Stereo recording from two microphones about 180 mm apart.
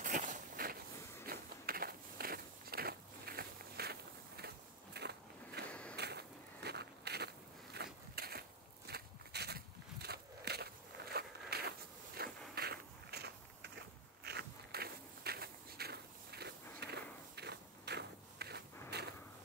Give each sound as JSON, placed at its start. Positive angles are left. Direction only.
{"t": 0.0, "sound": "walk", "side_deg": -45}
{"t": 1.2, "sound": "biting", "side_deg": -55}
{"t": 5.7, "sound": "a sound", "side_deg": 5}
{"t": 5.9, "sound": "a sound", "side_deg": -65}
{"t": 10.0, "sound": "walk", "side_deg": -65}
{"t": 11.1, "sound": "zipper", "side_deg": -60}
{"t": 12.2, "sound": "biting", "side_deg": -60}